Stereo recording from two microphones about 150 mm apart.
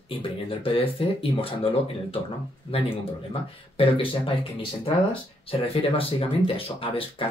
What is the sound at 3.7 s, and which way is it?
Speech, 35° left (ahead or behind).